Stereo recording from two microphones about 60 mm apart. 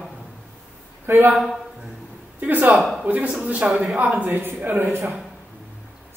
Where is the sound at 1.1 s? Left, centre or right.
Right.